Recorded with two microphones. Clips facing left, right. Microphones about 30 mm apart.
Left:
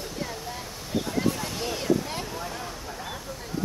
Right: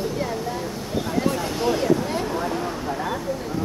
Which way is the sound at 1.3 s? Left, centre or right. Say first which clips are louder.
Right 6 dB; right.